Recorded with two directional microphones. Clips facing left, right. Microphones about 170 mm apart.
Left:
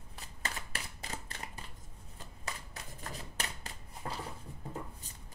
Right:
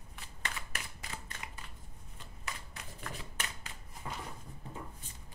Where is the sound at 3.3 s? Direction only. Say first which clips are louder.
Left 2 dB; 35° left (ahead or behind).